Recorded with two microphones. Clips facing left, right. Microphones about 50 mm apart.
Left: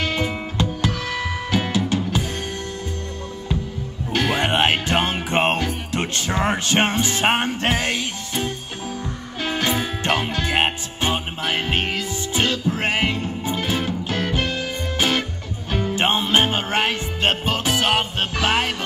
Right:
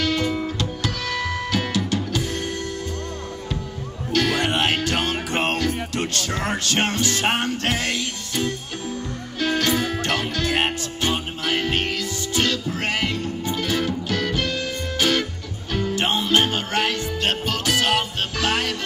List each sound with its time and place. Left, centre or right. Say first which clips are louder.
0.0 s music: right 1 dB; left
4.1 s music: left 1 dB; left